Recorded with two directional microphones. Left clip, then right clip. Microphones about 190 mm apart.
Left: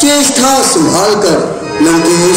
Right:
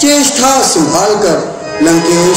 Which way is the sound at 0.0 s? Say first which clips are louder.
Even; 45° left (ahead or behind).